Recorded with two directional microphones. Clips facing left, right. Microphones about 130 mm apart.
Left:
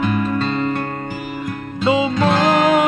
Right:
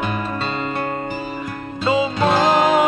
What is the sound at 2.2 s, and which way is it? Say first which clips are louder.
Music: even; 15° right (ahead or behind).